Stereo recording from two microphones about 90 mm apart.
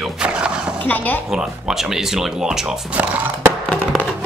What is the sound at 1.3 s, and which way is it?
Speech, 5° right (ahead or behind).